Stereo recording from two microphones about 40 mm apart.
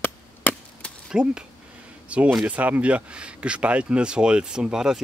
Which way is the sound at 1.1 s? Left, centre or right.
Centre.